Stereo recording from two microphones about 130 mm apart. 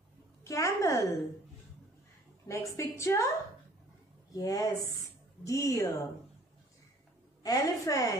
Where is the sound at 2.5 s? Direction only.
25° left (ahead or behind).